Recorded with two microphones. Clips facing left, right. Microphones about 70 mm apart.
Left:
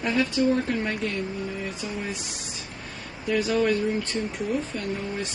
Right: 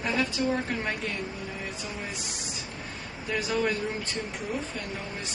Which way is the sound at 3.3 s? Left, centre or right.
Centre.